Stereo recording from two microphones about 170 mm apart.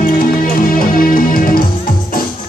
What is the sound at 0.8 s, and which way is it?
Music, 55° left (ahead or behind).